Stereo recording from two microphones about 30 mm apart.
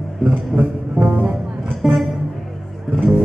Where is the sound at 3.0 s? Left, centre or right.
Centre.